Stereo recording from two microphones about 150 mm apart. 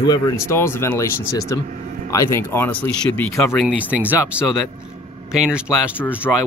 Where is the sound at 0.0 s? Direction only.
20° left (ahead or behind).